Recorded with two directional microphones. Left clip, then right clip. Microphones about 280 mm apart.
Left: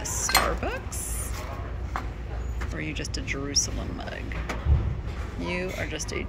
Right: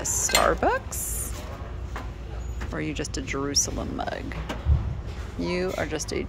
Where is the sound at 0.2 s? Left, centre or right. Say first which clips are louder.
Right 3 dB; centre.